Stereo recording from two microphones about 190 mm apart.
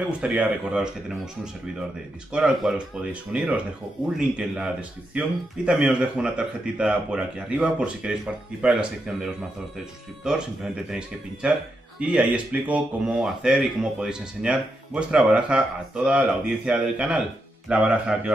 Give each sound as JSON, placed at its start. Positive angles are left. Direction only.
{"t": 0.2, "sound": "speech", "side_deg": -5}